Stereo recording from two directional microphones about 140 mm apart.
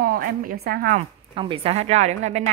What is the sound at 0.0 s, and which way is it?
A woman's voice, 90° right.